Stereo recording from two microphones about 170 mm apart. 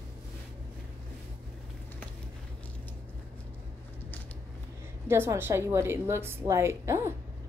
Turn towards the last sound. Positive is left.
turn(degrees=-15)  # may be behind; listen again after turning